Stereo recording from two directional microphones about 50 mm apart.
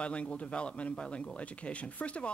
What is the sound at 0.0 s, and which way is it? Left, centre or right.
Speech, left.